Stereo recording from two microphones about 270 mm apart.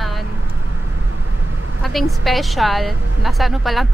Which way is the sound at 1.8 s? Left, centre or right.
Centre.